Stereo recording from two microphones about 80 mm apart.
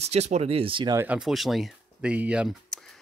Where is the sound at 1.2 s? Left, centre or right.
Centre.